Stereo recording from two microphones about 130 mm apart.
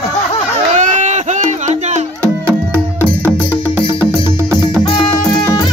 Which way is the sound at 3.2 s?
15° left (ahead or behind).